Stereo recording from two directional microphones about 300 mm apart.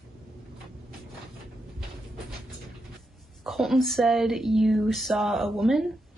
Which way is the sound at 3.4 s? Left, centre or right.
Centre.